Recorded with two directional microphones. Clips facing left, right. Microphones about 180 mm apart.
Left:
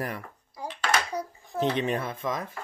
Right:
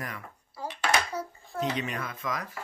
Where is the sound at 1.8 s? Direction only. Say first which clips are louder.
Left 5 dB; 30° left (ahead or behind).